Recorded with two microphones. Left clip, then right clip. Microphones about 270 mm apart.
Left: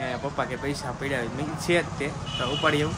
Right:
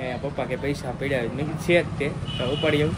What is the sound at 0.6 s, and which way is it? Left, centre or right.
Speech, centre.